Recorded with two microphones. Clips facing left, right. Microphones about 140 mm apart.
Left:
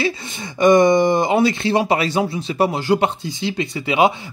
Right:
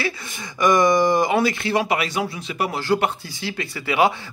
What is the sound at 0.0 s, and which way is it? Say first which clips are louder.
Speech: left 5 dB; 25° left (ahead or behind).